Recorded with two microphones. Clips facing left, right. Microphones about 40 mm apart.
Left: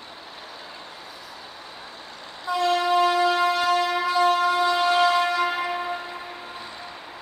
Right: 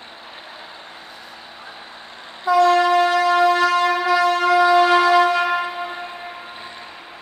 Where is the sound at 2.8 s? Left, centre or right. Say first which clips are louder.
Right 4 dB; right.